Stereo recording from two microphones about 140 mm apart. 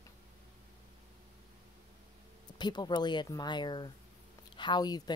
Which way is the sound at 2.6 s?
30° left (ahead or behind).